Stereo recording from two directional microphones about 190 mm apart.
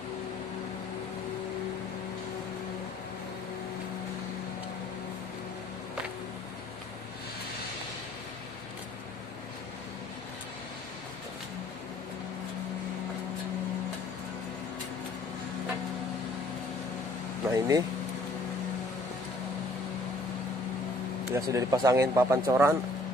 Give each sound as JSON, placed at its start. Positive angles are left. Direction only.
{"t": 17.5, "sound": "vehicle", "side_deg": -20}
{"t": 21.4, "sound": "speech", "side_deg": -15}